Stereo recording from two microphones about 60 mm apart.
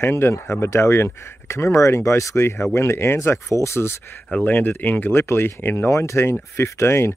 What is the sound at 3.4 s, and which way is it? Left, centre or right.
Speech, left.